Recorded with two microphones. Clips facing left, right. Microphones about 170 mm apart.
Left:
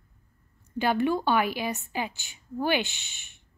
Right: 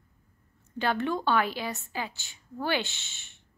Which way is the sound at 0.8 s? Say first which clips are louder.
Left 4 dB; 10° left (ahead or behind).